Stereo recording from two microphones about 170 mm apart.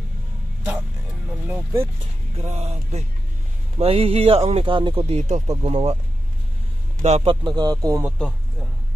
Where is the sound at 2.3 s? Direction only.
40° right (ahead or behind).